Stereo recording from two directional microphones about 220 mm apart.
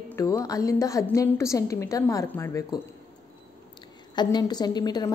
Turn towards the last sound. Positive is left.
turn(degrees=20)  # may be behind; listen again after turning